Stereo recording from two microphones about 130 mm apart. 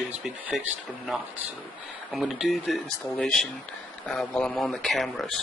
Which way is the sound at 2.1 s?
Centre (ahead or behind).